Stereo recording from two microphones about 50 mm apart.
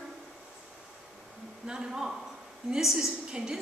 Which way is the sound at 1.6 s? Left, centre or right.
Centre.